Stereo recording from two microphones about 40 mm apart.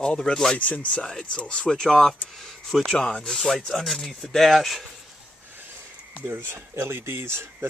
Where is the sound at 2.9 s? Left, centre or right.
Left.